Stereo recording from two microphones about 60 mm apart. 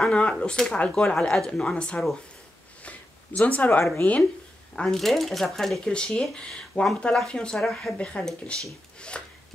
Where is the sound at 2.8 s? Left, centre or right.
Left.